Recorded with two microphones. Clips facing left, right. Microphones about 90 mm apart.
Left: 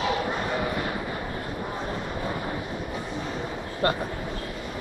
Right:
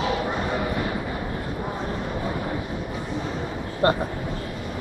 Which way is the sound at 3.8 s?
30° right (ahead or behind).